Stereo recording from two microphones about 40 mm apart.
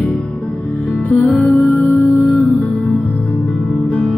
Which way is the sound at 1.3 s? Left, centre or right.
Left.